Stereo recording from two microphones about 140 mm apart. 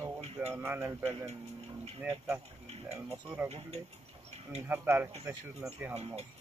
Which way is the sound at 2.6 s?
45° right (ahead or behind).